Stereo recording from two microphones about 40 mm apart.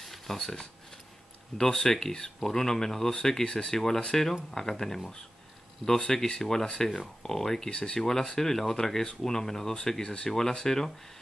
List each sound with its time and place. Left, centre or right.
0.0 s a sound: centre
1.6 s speech: centre
7.7 s speech: left
8.0 s speech: centre